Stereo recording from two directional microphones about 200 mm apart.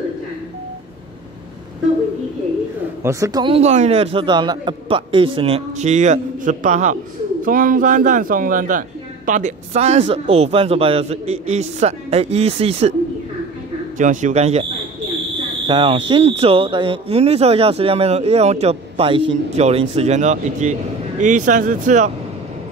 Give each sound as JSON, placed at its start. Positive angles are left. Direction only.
{"t": 3.0, "sound": "a man's voice", "side_deg": -15}
{"t": 13.9, "sound": "a man's voice", "side_deg": -40}